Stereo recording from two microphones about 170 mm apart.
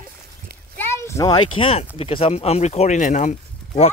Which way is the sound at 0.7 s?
15° left (ahead or behind).